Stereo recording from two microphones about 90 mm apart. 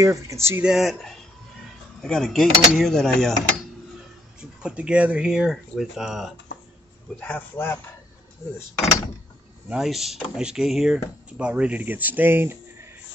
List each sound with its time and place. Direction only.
0.0 s speech: 35° right (ahead or behind)
0.7 s speech: centre (ahead or behind)
4.4 s speech: 10° right (ahead or behind)
7.2 s speech: 25° left (ahead or behind)
9.7 s speech: 5° right (ahead or behind); by 12.9 s 25° right (ahead or behind)